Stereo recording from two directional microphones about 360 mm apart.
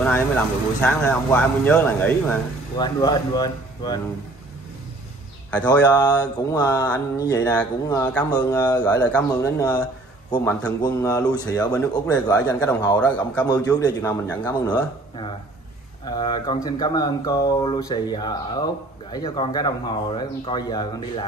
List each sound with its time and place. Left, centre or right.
0.7 s a man's voice: centre
5.5 s speech: centre
16.1 s speech: centre